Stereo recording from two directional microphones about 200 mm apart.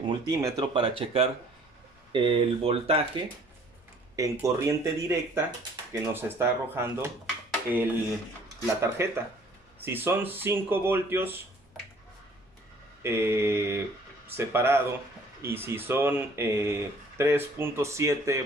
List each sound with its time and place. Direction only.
0.0 s speech: 20° right (ahead or behind)
4.2 s speech: 15° right (ahead or behind)
8.8 s speech: 10° right (ahead or behind)
13.0 s speech: 10° right (ahead or behind)